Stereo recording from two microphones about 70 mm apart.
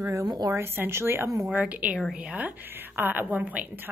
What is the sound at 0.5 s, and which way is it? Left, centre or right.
Speech, right.